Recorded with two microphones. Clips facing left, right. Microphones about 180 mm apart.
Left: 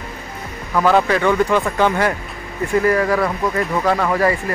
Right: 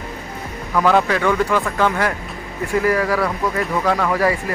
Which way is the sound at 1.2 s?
15° left (ahead or behind).